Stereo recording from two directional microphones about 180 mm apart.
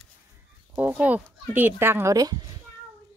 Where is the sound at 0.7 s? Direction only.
10° right (ahead or behind).